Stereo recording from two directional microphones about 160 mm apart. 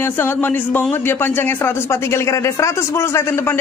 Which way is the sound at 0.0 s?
15° left (ahead or behind).